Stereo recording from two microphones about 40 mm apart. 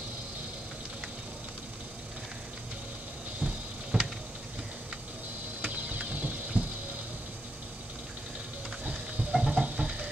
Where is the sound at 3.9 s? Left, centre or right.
Right.